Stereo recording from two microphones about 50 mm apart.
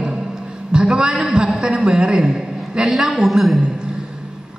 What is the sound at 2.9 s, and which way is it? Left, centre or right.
Speech, centre.